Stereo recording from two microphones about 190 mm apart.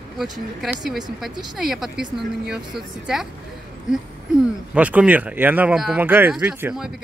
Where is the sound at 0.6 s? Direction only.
Centre (ahead or behind).